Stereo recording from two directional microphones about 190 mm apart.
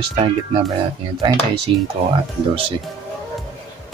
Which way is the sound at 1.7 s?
30° right (ahead or behind).